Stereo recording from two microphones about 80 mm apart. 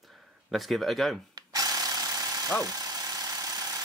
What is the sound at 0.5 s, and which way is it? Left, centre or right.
Speech, centre.